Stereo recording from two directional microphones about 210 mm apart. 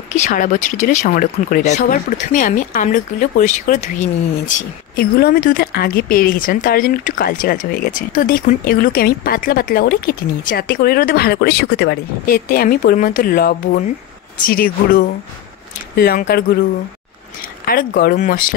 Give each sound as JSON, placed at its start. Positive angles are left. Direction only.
{"t": 0.1, "sound": "speech", "side_deg": 35}
{"t": 17.6, "sound": "speech", "side_deg": 45}